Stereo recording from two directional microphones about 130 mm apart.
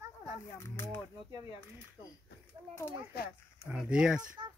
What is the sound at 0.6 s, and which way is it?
Speech, 15° left (ahead or behind).